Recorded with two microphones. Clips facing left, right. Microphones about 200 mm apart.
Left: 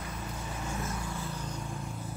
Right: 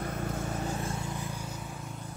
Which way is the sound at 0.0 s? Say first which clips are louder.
Right 6 dB; 55° right (ahead or behind).